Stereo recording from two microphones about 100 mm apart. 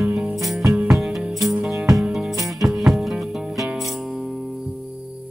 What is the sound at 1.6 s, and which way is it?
Music, 15° right (ahead or behind).